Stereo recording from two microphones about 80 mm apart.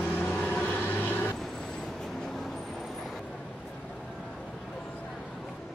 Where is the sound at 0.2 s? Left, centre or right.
Centre.